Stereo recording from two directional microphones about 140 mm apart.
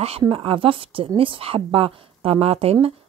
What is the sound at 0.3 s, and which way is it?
A woman's voice, 40° right (ahead or behind).